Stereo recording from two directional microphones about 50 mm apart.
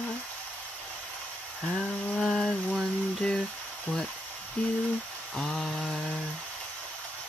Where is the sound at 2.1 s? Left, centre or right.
Centre.